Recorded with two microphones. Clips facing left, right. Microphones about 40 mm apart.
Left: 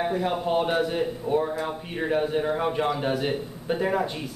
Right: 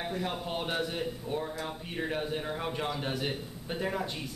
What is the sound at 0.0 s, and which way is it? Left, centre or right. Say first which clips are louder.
A man's voice: left 9 dB; centre.